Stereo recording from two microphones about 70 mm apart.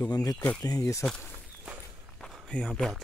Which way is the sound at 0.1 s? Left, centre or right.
Left.